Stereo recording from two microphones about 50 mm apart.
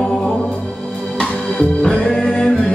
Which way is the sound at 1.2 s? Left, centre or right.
Centre.